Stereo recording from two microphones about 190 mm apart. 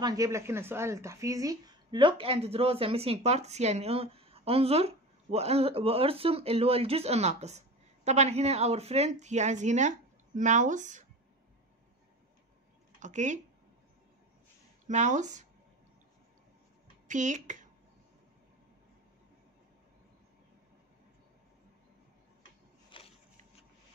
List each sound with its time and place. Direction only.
0.0 s a woman's voice: 20° right (ahead or behind); by 11.1 s 40° right (ahead or behind)
13.0 s a woman's voice: 40° right (ahead or behind)
14.9 s a woman's voice: 40° right (ahead or behind)
17.1 s a woman's voice: 40° right (ahead or behind)
22.8 s a sound: 30° left (ahead or behind)